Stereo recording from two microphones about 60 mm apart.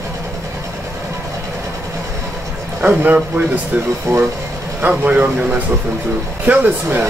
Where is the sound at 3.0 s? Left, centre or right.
Right.